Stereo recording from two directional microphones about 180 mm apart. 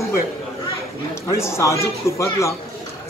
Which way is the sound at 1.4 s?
15° left (ahead or behind).